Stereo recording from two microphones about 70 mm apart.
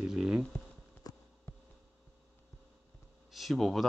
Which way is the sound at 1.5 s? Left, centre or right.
Left.